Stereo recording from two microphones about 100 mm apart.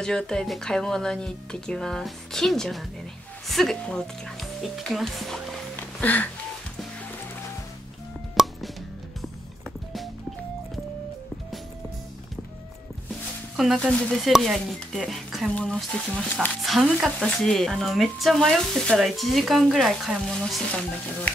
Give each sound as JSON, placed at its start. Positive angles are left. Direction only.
{"t": 0.0, "sound": "speech", "side_deg": 5}
{"t": 5.8, "sound": "music", "side_deg": 15}
{"t": 8.4, "sound": "music", "side_deg": 0}
{"t": 13.7, "sound": "speech", "side_deg": 5}